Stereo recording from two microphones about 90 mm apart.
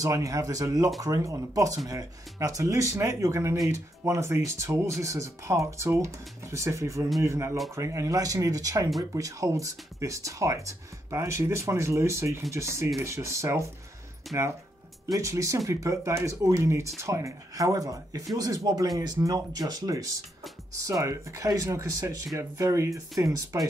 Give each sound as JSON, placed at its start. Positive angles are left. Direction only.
{"t": 0.0, "sound": "speech", "side_deg": -35}
{"t": 14.3, "sound": "speech", "side_deg": 0}
{"t": 15.1, "sound": "speech", "side_deg": -35}